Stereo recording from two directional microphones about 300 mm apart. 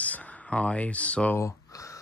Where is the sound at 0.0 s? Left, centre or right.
Centre.